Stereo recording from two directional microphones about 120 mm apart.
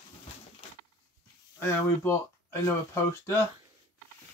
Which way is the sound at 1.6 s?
25° left (ahead or behind).